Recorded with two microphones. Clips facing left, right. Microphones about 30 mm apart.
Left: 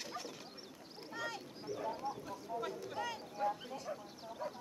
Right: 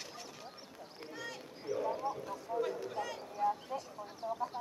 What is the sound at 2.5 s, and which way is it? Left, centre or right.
Speech, right.